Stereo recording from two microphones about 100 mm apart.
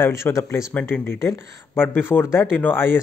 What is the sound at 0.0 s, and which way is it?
Speech, 30° left (ahead or behind).